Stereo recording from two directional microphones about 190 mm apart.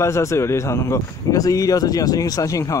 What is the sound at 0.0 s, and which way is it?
Speech, 15° left (ahead or behind).